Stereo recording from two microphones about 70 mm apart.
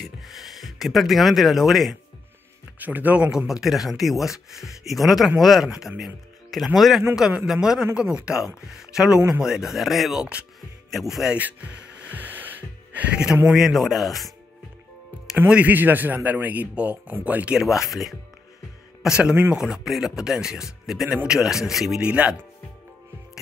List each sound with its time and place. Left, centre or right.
0.0 s gasp: centre
2.8 s a man's voice: right
3.3 s speech: centre
11.3 s music: right
13.5 s speech: centre
15.4 s a man's voice: right
17.6 s speech: centre
22.0 s speech: centre